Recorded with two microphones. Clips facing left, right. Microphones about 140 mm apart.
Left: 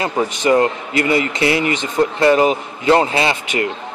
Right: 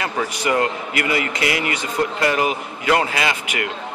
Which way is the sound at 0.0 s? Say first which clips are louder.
Left 5 dB; 25° left (ahead or behind).